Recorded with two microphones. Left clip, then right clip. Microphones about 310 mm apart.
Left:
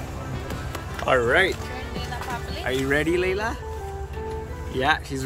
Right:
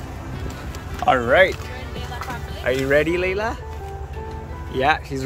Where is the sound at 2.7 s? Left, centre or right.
Centre.